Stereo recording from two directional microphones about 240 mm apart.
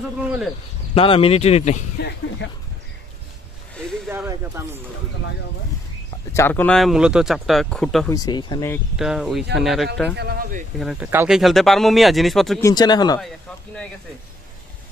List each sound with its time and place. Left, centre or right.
0.9 s speech: left
2.0 s speech: left
4.1 s speech: centre
6.3 s speech: centre
8.1 s speech: centre
8.9 s speech: centre
10.1 s speech: right
10.8 s speech: centre
12.6 s speech: centre